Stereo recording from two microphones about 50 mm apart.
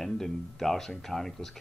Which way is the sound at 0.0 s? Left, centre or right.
Centre.